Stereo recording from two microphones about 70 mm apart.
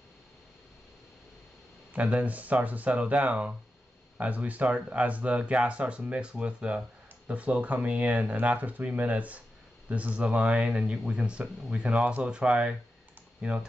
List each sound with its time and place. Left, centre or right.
2.0 s speech: centre